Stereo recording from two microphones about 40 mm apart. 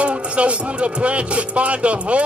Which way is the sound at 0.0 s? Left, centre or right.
Right.